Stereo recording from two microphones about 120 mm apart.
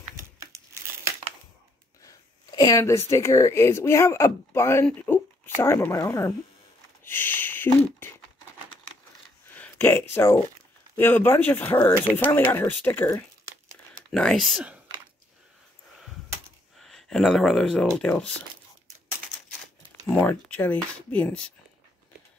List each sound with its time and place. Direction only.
0.1 s crumpling: 25° right (ahead or behind)
2.0 s speech: 30° left (ahead or behind)
7.1 s a sound: 15° left (ahead or behind)
9.5 s speech: 15° left (ahead or behind)
14.1 s speech: 5° left (ahead or behind)
16.8 s speech: centre (ahead or behind)
20.2 s speech: 10° left (ahead or behind)